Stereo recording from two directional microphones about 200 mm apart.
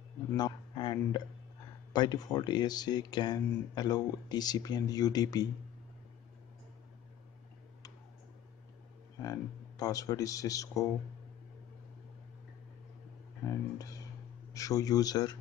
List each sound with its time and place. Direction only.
0.4 s speech: 20° left (ahead or behind)
9.2 s speech: 20° left (ahead or behind)
14.5 s speech: 15° left (ahead or behind)